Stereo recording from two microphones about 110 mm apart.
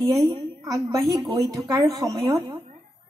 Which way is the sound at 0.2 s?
35° right (ahead or behind).